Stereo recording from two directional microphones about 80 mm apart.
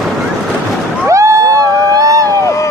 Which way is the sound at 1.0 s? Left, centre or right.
Right.